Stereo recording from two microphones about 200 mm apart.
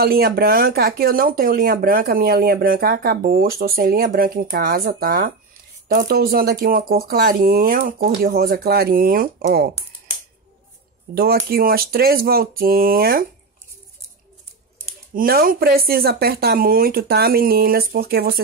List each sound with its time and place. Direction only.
0.0 s speech: 50° right (ahead or behind)
11.1 s speech: 50° right (ahead or behind)
15.1 s speech: 45° right (ahead or behind)